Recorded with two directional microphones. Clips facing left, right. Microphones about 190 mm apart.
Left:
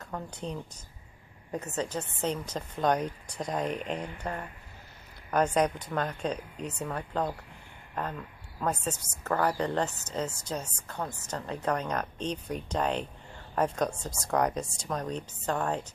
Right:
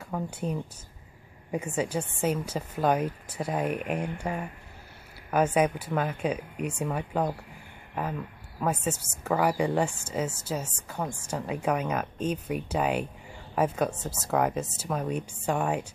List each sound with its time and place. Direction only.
0.0 s a woman's voice: 10° right (ahead or behind)